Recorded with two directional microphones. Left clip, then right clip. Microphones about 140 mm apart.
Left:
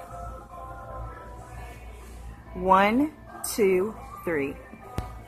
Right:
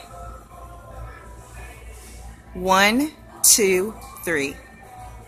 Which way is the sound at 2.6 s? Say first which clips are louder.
Right 3 dB; 10° right (ahead or behind).